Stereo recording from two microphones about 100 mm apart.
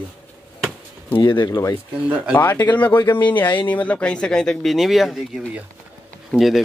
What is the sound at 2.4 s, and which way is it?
Speech, 20° left (ahead or behind).